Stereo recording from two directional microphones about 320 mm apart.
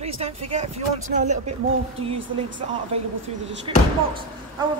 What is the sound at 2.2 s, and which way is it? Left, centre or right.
Speech, right.